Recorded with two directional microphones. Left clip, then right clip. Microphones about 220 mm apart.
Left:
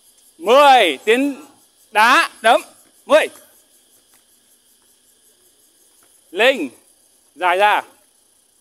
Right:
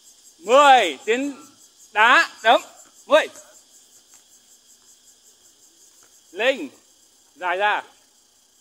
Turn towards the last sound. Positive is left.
turn(degrees=50)  # may be behind; listen again after turning